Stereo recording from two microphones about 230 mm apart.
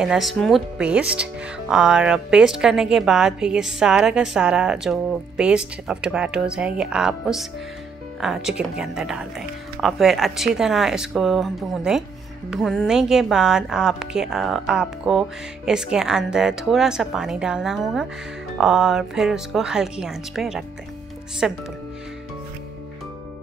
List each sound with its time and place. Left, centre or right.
0.0 s a woman's voice: centre